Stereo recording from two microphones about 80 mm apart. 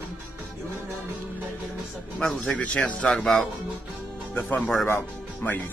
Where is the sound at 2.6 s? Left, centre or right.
Centre.